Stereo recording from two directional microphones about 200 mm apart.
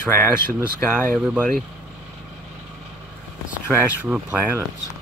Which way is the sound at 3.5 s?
10° right (ahead or behind).